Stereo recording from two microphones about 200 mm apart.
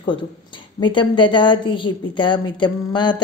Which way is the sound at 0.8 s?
25° left (ahead or behind).